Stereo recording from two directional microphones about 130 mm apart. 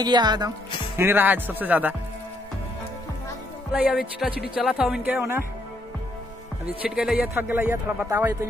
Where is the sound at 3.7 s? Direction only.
5° right (ahead or behind).